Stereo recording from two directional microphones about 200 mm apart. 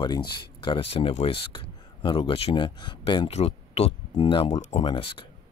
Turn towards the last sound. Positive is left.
turn(degrees=25)  # may be behind; listen again after turning